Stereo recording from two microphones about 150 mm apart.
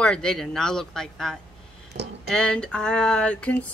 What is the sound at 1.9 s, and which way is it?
Speech, 90° right.